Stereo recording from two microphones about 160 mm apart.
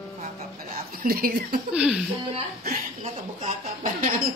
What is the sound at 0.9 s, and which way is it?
Speech, 70° right (ahead or behind).